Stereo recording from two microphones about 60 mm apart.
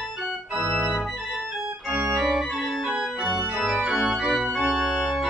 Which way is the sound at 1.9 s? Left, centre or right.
Right.